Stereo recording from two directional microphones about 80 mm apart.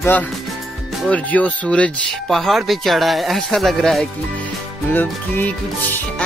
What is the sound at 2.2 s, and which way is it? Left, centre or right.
Speech, centre.